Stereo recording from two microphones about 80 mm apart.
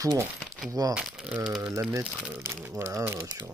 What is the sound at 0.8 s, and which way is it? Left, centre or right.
Speech, right.